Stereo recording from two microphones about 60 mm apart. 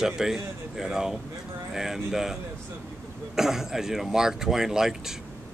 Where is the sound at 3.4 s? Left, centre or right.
Centre.